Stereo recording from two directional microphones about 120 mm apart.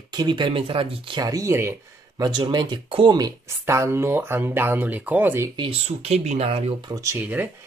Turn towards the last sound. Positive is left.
turn(degrees=-15)  # may be behind; listen again after turning